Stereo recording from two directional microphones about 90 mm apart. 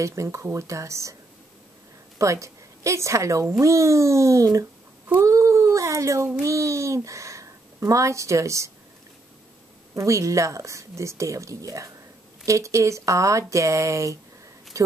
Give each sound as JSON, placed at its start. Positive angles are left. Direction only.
{"t": 0.0, "sound": "a woman's voice", "side_deg": -35}
{"t": 2.1, "sound": "a woman's voice", "side_deg": -35}
{"t": 9.9, "sound": "a woman's voice", "side_deg": -35}